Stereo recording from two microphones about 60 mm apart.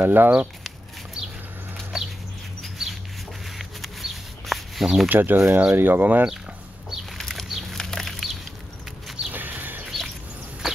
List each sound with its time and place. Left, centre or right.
0.0 s speech: right
1.9 s a sound: centre
5.1 s speech: right
6.9 s bird: centre
9.3 s a sound: right
9.8 s bird: centre